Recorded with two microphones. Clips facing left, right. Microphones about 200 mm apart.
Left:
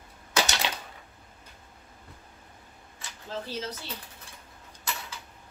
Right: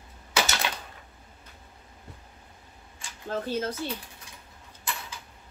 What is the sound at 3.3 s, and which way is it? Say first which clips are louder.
Speech: right 6 dB; 50° right (ahead or behind).